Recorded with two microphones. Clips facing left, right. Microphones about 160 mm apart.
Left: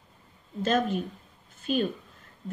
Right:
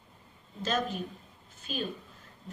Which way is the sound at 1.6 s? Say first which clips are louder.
Left 9 dB; 50° left (ahead or behind).